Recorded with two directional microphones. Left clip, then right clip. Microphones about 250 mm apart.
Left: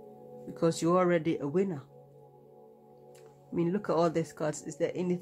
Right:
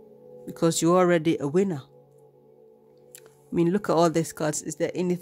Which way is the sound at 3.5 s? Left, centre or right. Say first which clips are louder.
Right 7 dB; right.